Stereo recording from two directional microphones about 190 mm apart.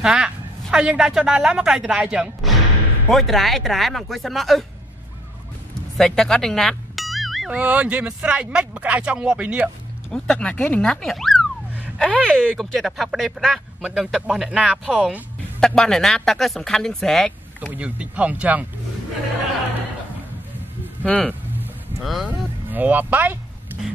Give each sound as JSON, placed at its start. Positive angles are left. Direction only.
{"t": 0.0, "sound": "a woman's voice", "side_deg": -5}
{"t": 5.9, "sound": "speech", "side_deg": 5}
{"t": 21.0, "sound": "speech", "side_deg": 5}
{"t": 21.3, "sound": "vehicle", "side_deg": -5}